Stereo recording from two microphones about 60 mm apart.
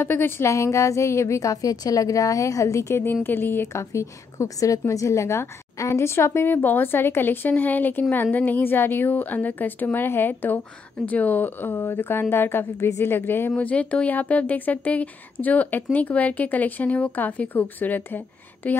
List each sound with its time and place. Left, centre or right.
0.0 s a woman's voice: left
0.5 s a woman's voice: left
3.3 s a woman's voice: left
3.6 s a woman's voice: left
13.6 s speech: left